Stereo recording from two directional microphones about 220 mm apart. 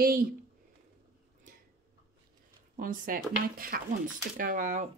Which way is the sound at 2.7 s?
35° right (ahead or behind).